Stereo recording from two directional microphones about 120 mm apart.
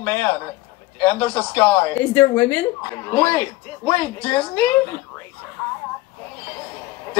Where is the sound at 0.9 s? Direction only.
15° left (ahead or behind).